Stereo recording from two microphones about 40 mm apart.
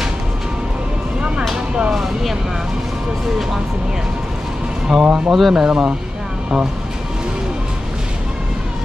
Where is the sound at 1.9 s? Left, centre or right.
Centre.